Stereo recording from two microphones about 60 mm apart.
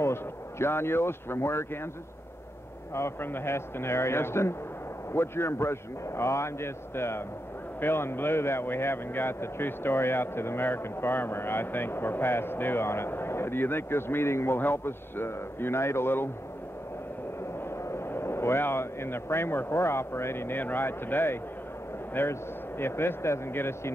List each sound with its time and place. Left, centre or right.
0.0 s speech: left
2.9 s a man's voice: left
17.8 s speech: left